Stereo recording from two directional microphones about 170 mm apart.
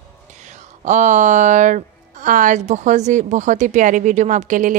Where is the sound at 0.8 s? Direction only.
45° right (ahead or behind).